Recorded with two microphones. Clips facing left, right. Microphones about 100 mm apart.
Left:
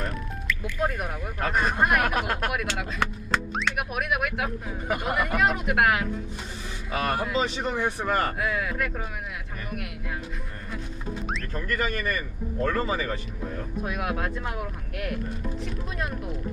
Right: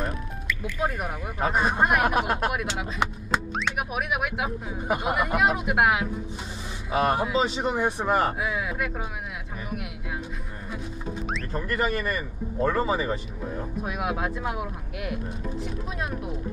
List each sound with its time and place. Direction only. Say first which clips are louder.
0.0 s music: right 1 dB; 5° right (ahead or behind)
1.9 s a man's voice: right 2 dB; 10° right (ahead or behind)
11.5 s a man's voice: right 3 dB; 15° right (ahead or behind)
13.8 s speech: right 1 dB; 5° right (ahead or behind)